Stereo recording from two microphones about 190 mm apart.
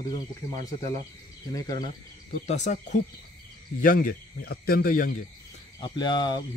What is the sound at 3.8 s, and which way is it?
Speech, 50° left (ahead or behind).